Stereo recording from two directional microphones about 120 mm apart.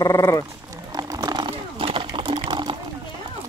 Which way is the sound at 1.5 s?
50° right (ahead or behind).